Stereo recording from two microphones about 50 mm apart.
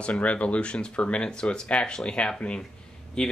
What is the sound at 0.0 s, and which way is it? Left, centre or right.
Speech, left.